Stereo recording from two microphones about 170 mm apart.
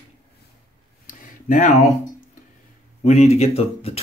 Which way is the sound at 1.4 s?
50° left (ahead or behind).